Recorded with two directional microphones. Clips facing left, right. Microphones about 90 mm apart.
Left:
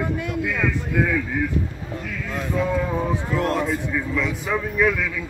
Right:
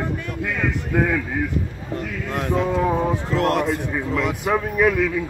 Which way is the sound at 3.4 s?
75° right (ahead or behind).